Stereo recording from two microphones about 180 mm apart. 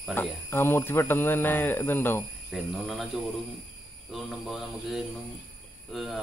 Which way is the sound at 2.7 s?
Centre (ahead or behind).